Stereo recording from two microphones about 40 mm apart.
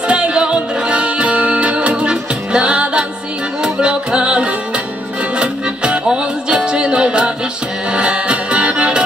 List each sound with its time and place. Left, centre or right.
0.1 s music: right